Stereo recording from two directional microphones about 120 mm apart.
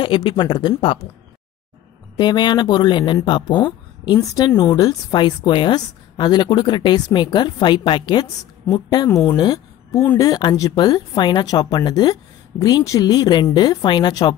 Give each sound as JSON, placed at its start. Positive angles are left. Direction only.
{"t": 0.0, "sound": "speech", "side_deg": 45}
{"t": 2.1, "sound": "speech", "side_deg": 40}